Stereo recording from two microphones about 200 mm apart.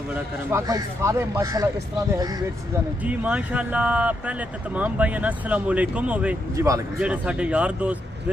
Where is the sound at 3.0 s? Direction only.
5° right (ahead or behind).